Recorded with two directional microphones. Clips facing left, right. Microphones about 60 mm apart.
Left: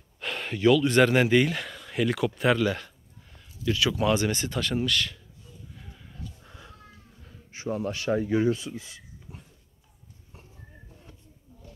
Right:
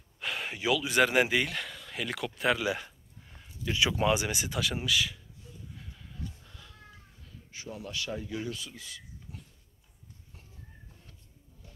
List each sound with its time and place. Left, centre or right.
0.2 s speech: centre
2.6 s a sound: centre
3.4 s speech: right
5.8 s a sound: centre
6.4 s cat: left
7.2 s speech: left